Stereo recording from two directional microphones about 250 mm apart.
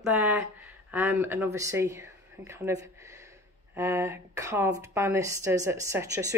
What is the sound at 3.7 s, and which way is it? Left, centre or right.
Speech, centre.